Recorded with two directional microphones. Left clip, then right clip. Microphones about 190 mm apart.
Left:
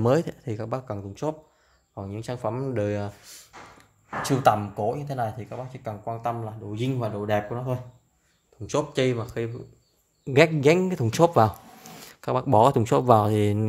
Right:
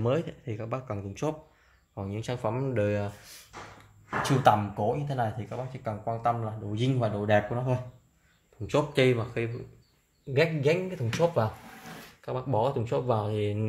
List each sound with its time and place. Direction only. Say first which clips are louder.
0.0 s speech: left 6 dB; 30° left (ahead or behind); by 3.1 s 15° left (ahead or behind)
4.2 s speech: left 2 dB; 25° left (ahead or behind)
10.3 s speech: left 7 dB; 50° left (ahead or behind)